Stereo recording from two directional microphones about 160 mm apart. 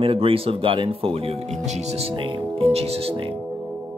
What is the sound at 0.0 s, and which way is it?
Speech, 35° right (ahead or behind).